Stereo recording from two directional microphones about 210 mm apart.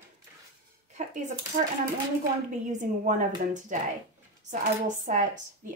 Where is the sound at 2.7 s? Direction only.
35° right (ahead or behind).